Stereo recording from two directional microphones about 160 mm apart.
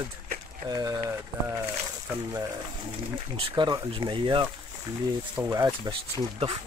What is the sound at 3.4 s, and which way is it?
Speech, 30° right (ahead or behind).